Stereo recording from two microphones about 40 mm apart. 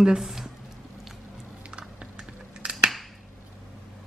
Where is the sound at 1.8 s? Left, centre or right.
Right.